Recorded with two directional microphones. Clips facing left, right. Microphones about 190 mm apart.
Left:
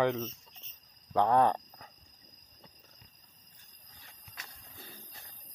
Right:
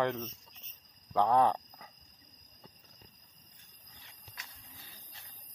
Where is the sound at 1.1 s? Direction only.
Centre (ahead or behind).